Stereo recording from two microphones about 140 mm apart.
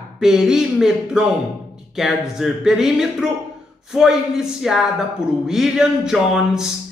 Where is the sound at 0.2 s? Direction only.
5° right (ahead or behind).